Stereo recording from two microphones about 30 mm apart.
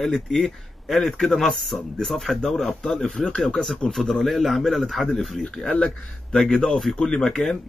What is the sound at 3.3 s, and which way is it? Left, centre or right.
Speech, left.